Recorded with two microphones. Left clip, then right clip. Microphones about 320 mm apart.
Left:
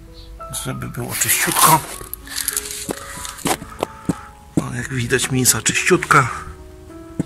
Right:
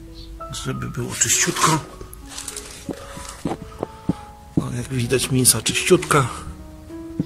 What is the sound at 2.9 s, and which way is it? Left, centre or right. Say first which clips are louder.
Music: left 3 dB; left.